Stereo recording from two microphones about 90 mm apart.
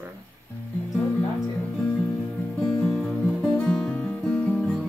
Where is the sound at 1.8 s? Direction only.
10° left (ahead or behind).